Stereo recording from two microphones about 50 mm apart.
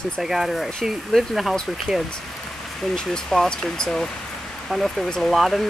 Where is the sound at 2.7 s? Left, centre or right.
Centre.